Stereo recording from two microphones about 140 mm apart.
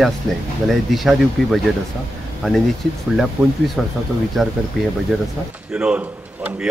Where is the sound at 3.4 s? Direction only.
15° right (ahead or behind).